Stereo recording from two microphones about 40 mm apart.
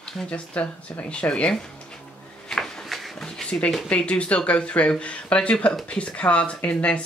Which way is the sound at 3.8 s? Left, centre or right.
Left.